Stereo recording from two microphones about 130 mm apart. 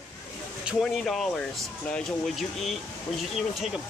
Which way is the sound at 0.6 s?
Centre (ahead or behind).